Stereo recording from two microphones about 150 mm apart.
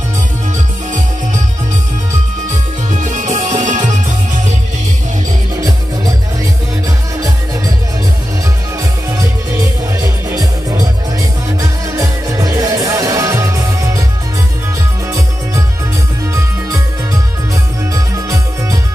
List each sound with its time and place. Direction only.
2.9 s music: 55° right (ahead or behind)
10.3 s music: 25° right (ahead or behind)
17.9 s music: 20° right (ahead or behind)